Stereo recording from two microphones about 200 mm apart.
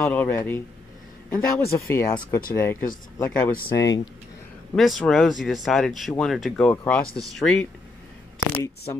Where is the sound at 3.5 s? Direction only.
60° left (ahead or behind).